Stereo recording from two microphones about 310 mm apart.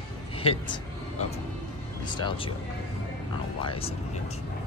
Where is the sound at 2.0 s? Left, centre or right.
Centre.